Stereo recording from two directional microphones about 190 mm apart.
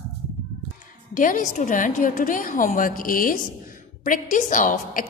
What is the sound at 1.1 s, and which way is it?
A woman's voice, 45° left (ahead or behind).